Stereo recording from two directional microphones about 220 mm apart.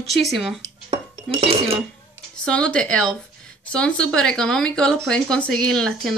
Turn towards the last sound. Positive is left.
turn(degrees=5)  # may be behind; listen again after turning